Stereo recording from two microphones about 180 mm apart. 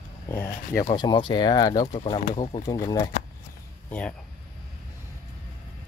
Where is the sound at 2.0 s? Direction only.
35° left (ahead or behind).